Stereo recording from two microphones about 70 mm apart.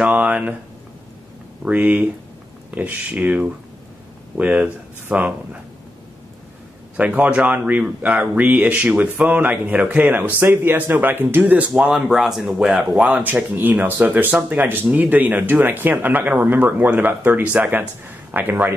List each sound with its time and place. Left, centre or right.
0.0 s a sound: right
1.6 s speech: right
7.0 s speech: right
11.7 s speech: centre
12.9 s speech: centre